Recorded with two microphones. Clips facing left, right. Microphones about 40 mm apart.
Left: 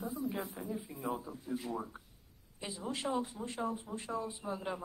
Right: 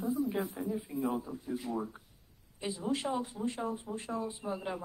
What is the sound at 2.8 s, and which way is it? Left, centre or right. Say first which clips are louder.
Speech: right 2 dB; centre.